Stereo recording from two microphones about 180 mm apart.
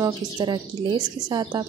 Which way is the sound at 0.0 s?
25° right (ahead or behind).